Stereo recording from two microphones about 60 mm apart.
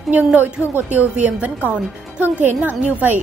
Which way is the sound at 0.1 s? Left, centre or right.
Right.